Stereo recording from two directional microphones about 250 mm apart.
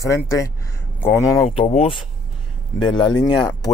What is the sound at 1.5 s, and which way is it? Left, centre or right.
Speech, left.